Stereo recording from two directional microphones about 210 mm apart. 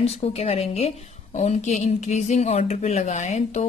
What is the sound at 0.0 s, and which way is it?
A woman's voice, 30° left (ahead or behind).